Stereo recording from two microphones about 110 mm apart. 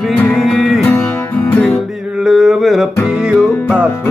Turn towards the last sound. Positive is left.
turn(degrees=-10)  # may be behind; listen again after turning